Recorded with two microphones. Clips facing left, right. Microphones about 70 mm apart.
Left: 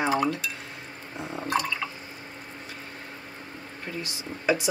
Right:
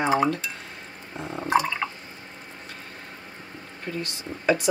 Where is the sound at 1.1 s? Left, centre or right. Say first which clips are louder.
Right 2 dB; centre.